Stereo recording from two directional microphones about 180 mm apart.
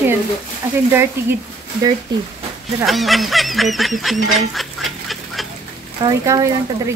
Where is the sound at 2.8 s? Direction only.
Centre (ahead or behind).